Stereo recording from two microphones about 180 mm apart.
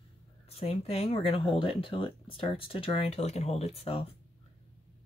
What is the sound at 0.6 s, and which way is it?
Speech, 35° left (ahead or behind).